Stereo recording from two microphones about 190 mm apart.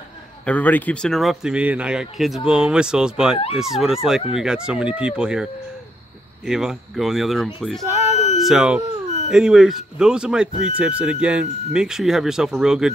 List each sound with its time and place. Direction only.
0.5 s speech: 10° left (ahead or behind)
8.1 s a sound: 35° left (ahead or behind)
8.4 s speech: 5° right (ahead or behind)